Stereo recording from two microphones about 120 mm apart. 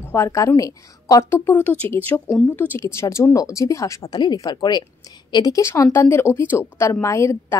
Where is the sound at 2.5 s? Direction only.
15° left (ahead or behind).